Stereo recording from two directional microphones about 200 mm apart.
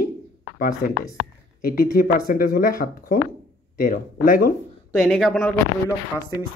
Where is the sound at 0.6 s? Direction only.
45° left (ahead or behind).